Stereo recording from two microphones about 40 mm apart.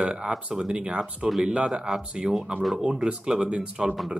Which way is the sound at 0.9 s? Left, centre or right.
Centre.